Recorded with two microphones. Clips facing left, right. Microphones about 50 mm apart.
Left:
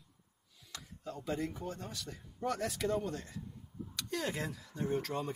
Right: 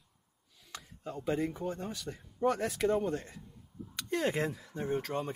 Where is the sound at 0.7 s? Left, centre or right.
Right.